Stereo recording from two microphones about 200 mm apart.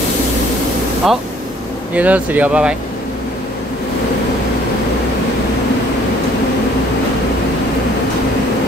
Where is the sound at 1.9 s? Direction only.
5° right (ahead or behind).